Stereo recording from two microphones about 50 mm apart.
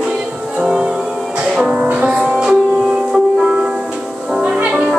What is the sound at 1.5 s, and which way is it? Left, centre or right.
Music, centre.